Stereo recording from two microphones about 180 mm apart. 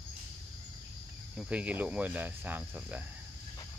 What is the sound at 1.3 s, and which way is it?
Speech, 5° right (ahead or behind).